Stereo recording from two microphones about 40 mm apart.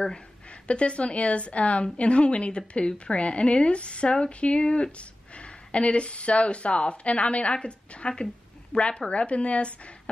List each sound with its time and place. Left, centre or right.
0.0 s a woman's voice: left